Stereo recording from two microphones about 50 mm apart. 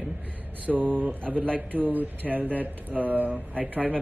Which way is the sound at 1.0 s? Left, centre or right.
Right.